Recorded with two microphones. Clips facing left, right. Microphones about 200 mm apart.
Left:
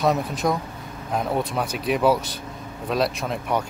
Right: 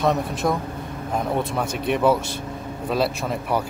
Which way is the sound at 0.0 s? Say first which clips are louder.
Even; centre (ahead or behind).